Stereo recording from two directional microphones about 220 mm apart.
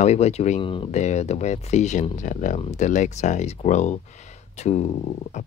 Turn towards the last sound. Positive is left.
turn(degrees=30)  # may be behind; listen again after turning